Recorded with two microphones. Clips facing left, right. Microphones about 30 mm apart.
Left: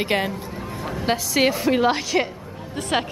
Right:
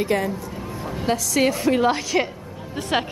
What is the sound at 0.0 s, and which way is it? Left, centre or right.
Speech, left.